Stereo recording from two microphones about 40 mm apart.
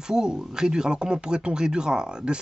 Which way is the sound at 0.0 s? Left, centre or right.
Centre.